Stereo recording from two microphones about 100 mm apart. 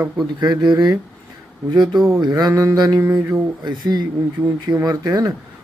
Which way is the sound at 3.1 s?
25° right (ahead or behind).